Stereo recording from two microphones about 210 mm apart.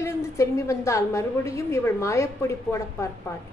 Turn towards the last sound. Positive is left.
turn(degrees=15)  # may be behind; listen again after turning